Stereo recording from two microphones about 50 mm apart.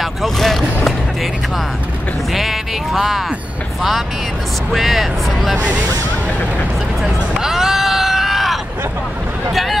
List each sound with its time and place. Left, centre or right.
0.0 s vehicle: centre
2.3 s music: centre
4.6 s speech: centre
5.6 s speech: right
7.0 s a sound: centre
9.5 s speech: centre